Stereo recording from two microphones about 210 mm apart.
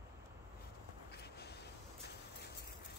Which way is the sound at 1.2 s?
50° left (ahead or behind).